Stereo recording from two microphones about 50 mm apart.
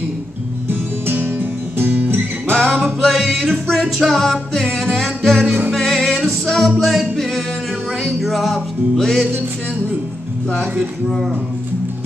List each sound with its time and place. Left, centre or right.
0.7 s music: right
2.7 s music: centre
10.8 s music: centre